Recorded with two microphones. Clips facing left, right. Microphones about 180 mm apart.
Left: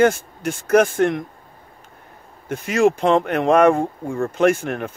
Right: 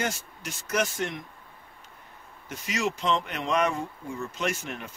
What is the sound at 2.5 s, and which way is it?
Speech, 55° left (ahead or behind).